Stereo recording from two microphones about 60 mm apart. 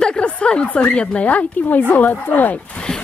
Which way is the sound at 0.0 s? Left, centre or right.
Centre.